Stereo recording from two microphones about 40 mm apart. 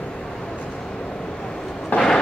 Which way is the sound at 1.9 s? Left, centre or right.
Left.